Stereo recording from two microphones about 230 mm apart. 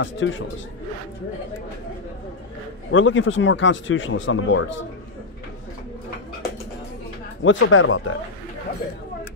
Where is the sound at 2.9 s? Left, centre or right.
Left.